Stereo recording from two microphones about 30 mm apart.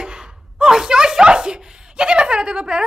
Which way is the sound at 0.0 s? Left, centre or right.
Right.